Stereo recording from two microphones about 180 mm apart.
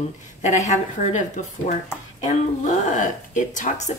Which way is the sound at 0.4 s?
40° left (ahead or behind).